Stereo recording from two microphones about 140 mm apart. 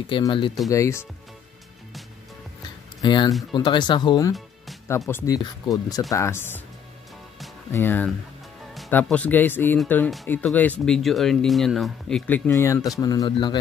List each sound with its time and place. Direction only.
0.0 s speech: 35° left (ahead or behind)
0.7 s speech: 20° left (ahead or behind)
3.0 s speech: 30° left (ahead or behind)
7.7 s speech: 15° left (ahead or behind); by 13.6 s 30° left (ahead or behind)